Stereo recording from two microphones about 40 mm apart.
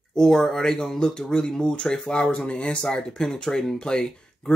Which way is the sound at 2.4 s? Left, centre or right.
Left.